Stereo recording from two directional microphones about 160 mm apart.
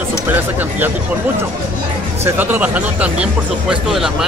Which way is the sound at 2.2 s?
10° right (ahead or behind).